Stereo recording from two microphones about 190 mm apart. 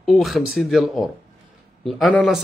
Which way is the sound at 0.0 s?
Centre (ahead or behind).